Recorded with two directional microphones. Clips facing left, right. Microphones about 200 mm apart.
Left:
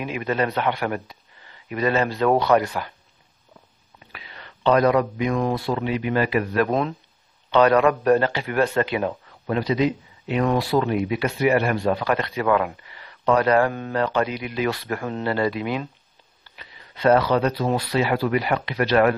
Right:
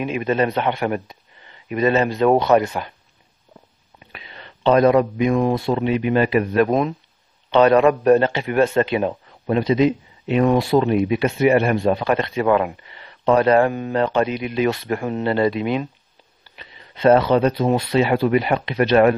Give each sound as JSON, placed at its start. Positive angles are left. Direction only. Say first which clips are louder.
{"t": 0.0, "sound": "a man's voice", "louder": "right 4 dB", "side_deg": -20}
{"t": 4.1, "sound": "a man's voice", "louder": "right 2 dB", "side_deg": -25}